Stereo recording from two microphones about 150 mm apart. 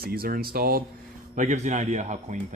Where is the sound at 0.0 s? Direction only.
90° right.